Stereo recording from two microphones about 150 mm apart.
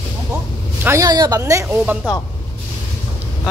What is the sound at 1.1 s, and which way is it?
Speech, 30° right (ahead or behind).